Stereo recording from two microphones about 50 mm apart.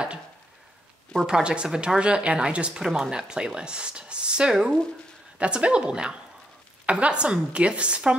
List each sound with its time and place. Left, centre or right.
1.2 s a woman's voice: centre